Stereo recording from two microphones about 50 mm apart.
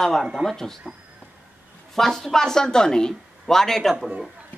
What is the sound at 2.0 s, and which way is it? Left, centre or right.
Speech, centre.